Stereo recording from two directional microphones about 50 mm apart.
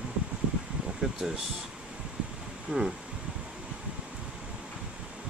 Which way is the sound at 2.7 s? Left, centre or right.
Centre.